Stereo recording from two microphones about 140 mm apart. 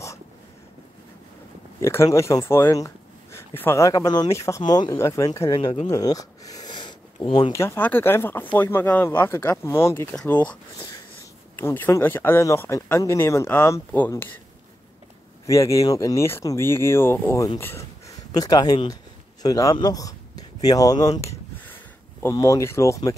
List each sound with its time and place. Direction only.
1.8 s speech: 20° left (ahead or behind)
5.9 s sniff: 25° left (ahead or behind)
7.5 s speech: 15° left (ahead or behind)
15.4 s speech: 20° left (ahead or behind)
22.3 s speech: 25° left (ahead or behind)